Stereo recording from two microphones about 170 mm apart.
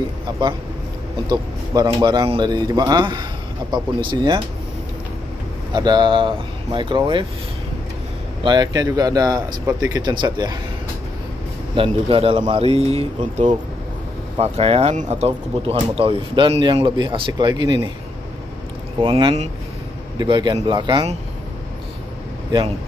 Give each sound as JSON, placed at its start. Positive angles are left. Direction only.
{"t": 1.3, "sound": "speech", "side_deg": -25}
{"t": 5.7, "sound": "speech", "side_deg": -25}
{"t": 8.5, "sound": "speech", "side_deg": -25}
{"t": 11.7, "sound": "speech", "side_deg": -30}
{"t": 18.9, "sound": "speech", "side_deg": -30}